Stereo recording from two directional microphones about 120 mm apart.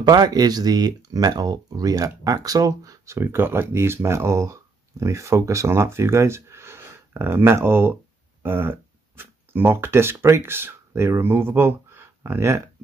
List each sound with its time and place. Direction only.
0.0 s speech: 35° right (ahead or behind)